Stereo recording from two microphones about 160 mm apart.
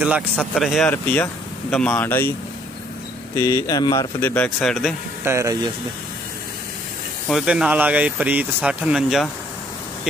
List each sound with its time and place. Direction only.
0.4 s a man's voice: centre (ahead or behind)
3.3 s speech: 20° left (ahead or behind)
4.2 s speech: 15° left (ahead or behind)
4.6 s a man's voice: centre (ahead or behind)
5.2 s speech: 15° right (ahead or behind)
7.2 s speech: 5° right (ahead or behind)